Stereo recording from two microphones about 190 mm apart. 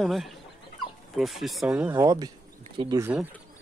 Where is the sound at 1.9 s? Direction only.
20° right (ahead or behind).